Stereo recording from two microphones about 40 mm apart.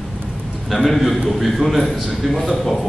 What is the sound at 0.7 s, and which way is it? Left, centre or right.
A man's voice, centre.